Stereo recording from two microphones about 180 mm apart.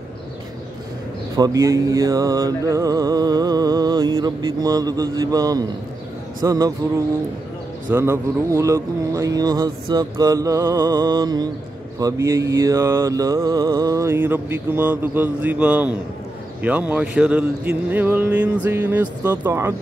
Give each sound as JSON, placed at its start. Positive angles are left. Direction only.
{"t": 1.3, "sound": "mantra", "side_deg": -20}
{"t": 7.9, "sound": "mantra", "side_deg": -15}